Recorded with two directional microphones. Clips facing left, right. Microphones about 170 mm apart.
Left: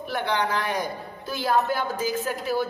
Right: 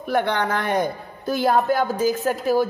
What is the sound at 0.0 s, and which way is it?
A woman's voice, 50° right (ahead or behind).